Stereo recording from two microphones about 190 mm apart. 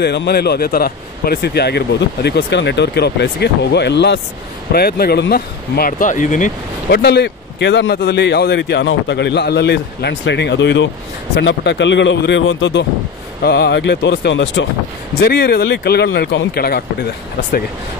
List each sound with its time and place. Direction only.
0.0 s speech: 60° left (ahead or behind); by 6.5 s 40° left (ahead or behind)
6.9 s speech: 60° left (ahead or behind)
13.4 s speech: 60° left (ahead or behind); by 14.7 s 80° left
15.1 s speech: 55° left (ahead or behind)